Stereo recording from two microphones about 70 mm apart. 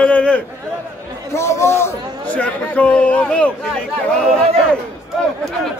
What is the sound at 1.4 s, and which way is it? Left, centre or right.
Speech, left.